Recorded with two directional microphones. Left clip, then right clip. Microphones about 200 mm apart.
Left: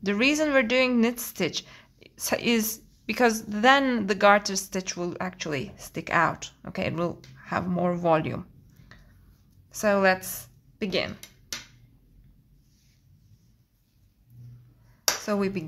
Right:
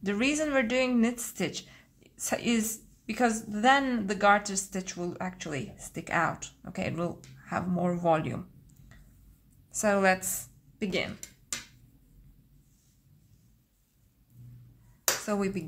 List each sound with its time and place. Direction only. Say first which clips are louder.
0.0 s a woman's voice: left 5 dB; 20° left (ahead or behind)
9.7 s a woman's voice: left 3 dB; 15° left (ahead or behind)
15.2 s speech: left 4 dB; 20° left (ahead or behind)